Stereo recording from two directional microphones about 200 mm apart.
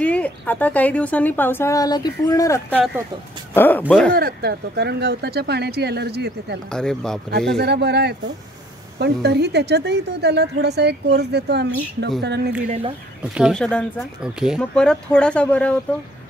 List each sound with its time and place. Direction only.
0.0 s a woman's voice: 5° left (ahead or behind)
2.7 s speech: centre (ahead or behind)
3.5 s a woman's voice: 10° left (ahead or behind)
4.1 s a woman's voice: 50° right (ahead or behind)
6.7 s speech: 5° left (ahead or behind)
7.5 s a woman's voice: 55° right (ahead or behind)
12.6 s speech: 35° right (ahead or behind)
13.3 s speech: centre (ahead or behind)